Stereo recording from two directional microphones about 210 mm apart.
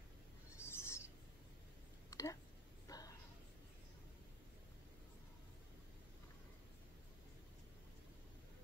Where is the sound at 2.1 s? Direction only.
15° left (ahead or behind).